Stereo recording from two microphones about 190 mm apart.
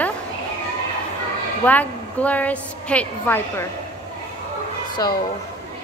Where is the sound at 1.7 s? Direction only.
10° left (ahead or behind).